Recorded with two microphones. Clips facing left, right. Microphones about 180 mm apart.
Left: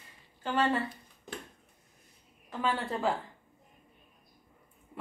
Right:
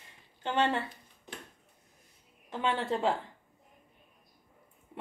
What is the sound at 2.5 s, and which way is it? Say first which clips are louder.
Speech: right 1 dB; 25° right (ahead or behind).